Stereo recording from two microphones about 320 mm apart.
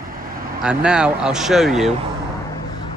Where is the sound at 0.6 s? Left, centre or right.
Centre.